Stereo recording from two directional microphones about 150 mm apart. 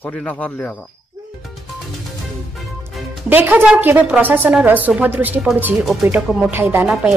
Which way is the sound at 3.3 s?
15° right (ahead or behind).